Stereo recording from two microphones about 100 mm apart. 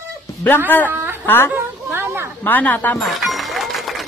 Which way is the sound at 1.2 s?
20° left (ahead or behind).